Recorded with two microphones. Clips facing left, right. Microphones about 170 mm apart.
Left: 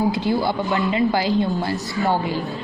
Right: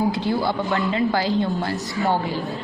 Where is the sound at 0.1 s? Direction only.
15° left (ahead or behind).